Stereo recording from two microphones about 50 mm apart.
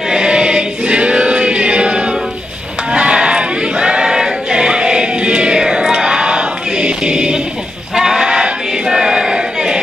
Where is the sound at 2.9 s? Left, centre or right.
Centre.